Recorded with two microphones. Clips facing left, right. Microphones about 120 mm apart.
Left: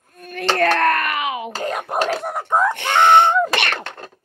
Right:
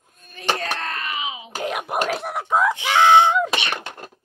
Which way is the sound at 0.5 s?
60° left (ahead or behind).